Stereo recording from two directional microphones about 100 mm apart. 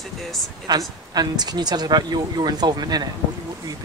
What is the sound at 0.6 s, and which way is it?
Speech, 45° right (ahead or behind).